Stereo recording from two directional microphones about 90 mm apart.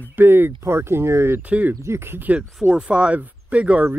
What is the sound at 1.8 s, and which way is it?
Speech, 30° right (ahead or behind).